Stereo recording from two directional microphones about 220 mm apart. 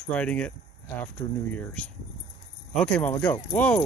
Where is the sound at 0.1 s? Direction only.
5° left (ahead or behind).